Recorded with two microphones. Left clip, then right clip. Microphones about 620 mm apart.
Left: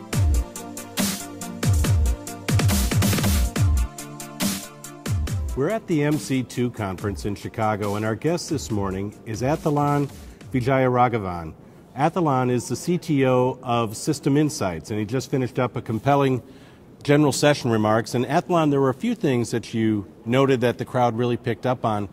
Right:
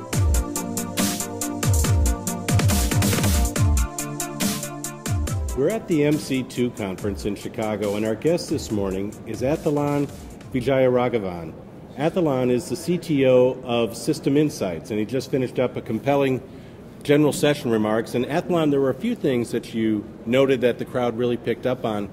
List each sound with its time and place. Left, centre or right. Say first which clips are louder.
0.1 s music: right 3 dB; centre
5.6 s speech: right 2 dB; left